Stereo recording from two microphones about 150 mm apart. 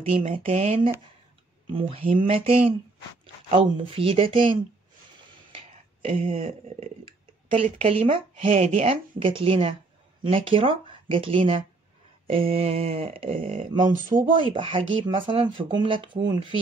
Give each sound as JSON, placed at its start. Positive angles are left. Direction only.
{"t": 0.3, "sound": "speech", "side_deg": -45}
{"t": 6.0, "sound": "speech", "side_deg": -40}
{"t": 13.7, "sound": "speech", "side_deg": -60}
{"t": 14.4, "sound": "speech", "side_deg": -35}